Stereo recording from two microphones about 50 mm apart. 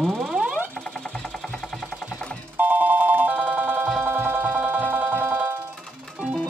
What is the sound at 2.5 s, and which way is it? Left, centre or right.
Music, right.